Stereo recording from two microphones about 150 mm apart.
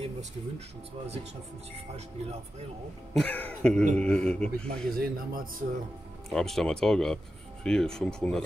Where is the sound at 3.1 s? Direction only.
10° left (ahead or behind).